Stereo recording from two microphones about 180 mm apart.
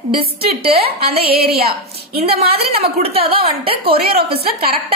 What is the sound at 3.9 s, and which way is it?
Speech, 60° right (ahead or behind).